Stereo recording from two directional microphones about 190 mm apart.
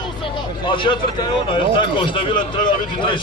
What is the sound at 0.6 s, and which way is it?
A man's voice, 25° left (ahead or behind).